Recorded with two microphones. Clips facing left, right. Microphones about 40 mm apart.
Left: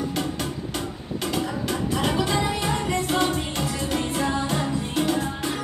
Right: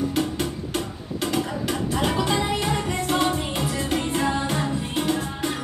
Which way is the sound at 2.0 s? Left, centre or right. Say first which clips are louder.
Right 1 dB; centre.